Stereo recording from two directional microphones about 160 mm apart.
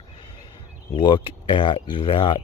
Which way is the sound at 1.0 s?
30° left (ahead or behind).